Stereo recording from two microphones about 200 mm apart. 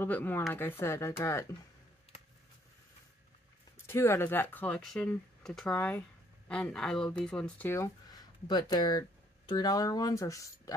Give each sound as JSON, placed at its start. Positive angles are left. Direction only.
{"t": 0.0, "sound": "speech", "side_deg": 10}
{"t": 3.8, "sound": "speech", "side_deg": 15}